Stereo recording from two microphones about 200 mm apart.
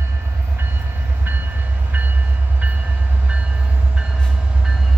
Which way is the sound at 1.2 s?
10° right (ahead or behind).